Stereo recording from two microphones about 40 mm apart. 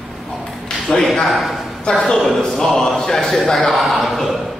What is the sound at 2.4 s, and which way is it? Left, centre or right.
Speech, centre.